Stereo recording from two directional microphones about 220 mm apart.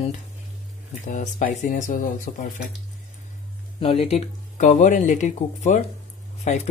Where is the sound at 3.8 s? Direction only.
25° left (ahead or behind).